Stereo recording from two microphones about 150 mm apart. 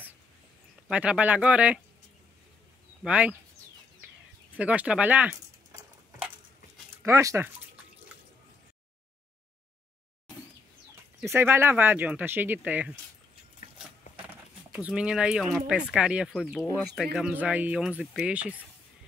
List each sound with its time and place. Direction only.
0.8 s speech: 5° right (ahead or behind)
3.0 s speech: 10° right (ahead or behind)
4.6 s speech: 10° right (ahead or behind)
7.0 s a sound: 20° right (ahead or behind)
11.2 s speech: 15° right (ahead or behind)
14.7 s speech: 5° right (ahead or behind)